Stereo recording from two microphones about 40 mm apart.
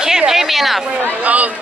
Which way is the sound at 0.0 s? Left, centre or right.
Centre.